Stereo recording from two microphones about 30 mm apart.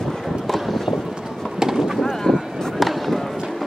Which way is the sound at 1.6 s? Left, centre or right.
Centre.